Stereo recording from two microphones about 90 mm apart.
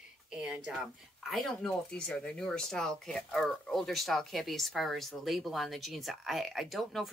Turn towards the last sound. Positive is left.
turn(degrees=0)  # may be behind; listen again after turning